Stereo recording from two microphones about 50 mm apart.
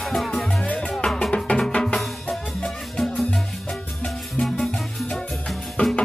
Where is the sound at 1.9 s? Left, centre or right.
Centre.